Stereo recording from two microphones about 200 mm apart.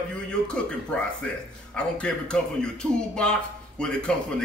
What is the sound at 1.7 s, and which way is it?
A man's voice, 5° left (ahead or behind).